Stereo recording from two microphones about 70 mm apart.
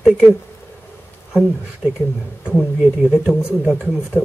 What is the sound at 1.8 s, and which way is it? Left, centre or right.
Speech, centre.